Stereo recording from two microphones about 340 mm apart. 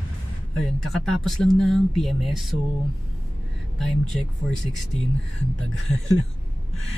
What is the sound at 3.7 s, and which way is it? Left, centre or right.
Speech, centre.